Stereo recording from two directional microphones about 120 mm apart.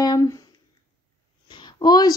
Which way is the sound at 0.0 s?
30° left (ahead or behind).